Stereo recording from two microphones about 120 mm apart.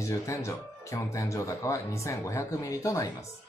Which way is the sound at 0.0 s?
25° left (ahead or behind).